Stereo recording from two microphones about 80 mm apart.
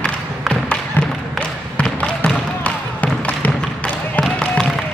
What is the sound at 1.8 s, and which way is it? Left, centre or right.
Basketball bounce, centre.